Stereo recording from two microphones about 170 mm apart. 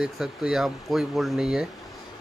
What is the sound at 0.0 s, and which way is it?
Speech, 5° right (ahead or behind).